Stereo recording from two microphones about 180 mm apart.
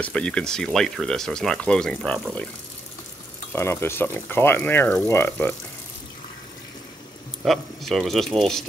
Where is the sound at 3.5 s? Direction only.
15° left (ahead or behind).